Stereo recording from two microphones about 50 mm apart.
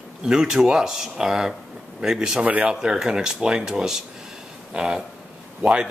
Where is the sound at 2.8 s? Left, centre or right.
Centre.